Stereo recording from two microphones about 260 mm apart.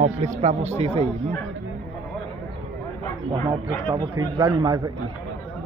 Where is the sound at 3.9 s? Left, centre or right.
Centre.